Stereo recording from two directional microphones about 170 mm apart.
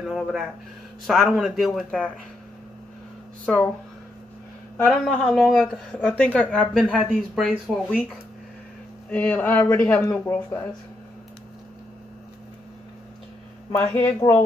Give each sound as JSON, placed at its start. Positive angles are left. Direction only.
{"t": 0.0, "sound": "speech", "side_deg": 0}
{"t": 3.4, "sound": "speech", "side_deg": 5}
{"t": 5.0, "sound": "speech", "side_deg": 0}
{"t": 13.7, "sound": "speech", "side_deg": 15}